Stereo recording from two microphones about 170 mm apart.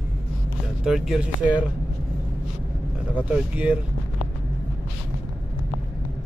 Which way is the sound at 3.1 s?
10° right (ahead or behind).